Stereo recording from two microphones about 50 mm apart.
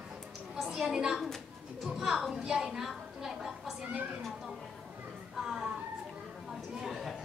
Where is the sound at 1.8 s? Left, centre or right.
Centre.